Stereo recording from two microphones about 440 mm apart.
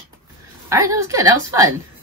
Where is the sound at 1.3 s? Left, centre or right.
Right.